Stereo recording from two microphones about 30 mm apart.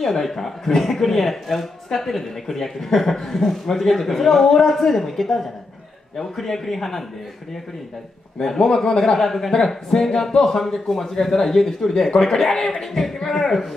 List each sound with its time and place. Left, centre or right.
0.0 s speech: centre
8.8 s a man's voice: centre
9.1 s speech: centre